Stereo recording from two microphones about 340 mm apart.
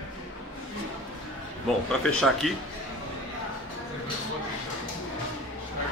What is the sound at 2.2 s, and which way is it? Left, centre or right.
Speech, centre.